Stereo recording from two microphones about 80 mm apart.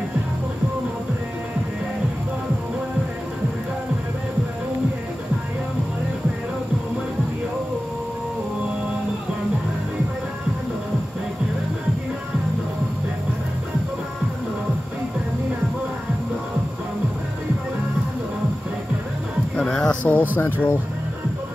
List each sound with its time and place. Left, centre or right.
19.5 s music: centre
20.3 s speech: left